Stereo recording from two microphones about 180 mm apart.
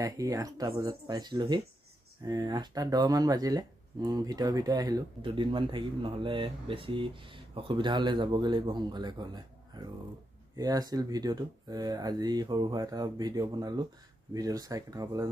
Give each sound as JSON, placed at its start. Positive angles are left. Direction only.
{"t": 0.0, "sound": "speech", "side_deg": -20}